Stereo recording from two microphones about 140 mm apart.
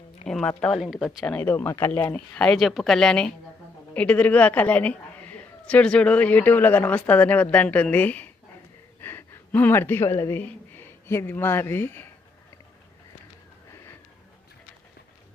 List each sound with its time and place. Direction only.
0.2 s speech: 5° left (ahead or behind)
1.3 s a woman's voice: 10° left (ahead or behind)